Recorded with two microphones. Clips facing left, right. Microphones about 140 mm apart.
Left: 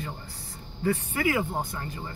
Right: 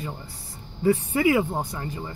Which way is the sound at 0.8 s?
20° right (ahead or behind).